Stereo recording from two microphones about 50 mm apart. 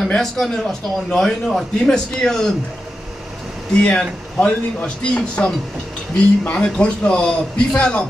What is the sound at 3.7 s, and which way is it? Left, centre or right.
A man's voice, left.